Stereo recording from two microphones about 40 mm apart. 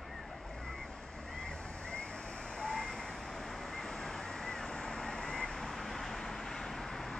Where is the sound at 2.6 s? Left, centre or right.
Centre.